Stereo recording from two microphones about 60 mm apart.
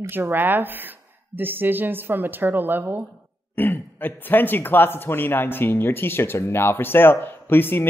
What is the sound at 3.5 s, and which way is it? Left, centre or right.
Speech, left.